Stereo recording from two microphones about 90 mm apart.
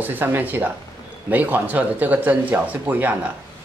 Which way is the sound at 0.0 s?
20° right (ahead or behind).